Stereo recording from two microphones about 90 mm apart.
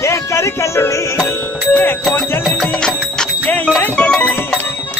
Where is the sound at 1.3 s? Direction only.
20° left (ahead or behind).